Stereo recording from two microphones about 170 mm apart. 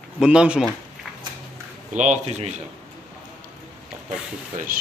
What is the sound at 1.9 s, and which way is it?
Speech, 45° right (ahead or behind).